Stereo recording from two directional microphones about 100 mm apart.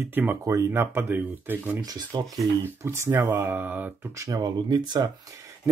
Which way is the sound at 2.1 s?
45° right (ahead or behind).